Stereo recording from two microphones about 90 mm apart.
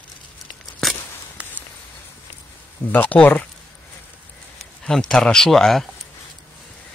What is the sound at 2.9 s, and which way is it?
Speech, 15° left (ahead or behind).